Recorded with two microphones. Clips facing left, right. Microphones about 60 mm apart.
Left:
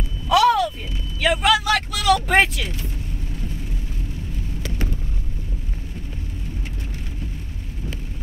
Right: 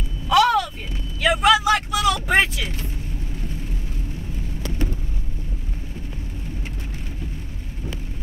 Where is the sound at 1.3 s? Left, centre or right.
Centre.